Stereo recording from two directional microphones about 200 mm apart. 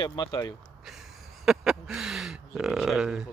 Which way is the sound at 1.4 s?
Centre (ahead or behind).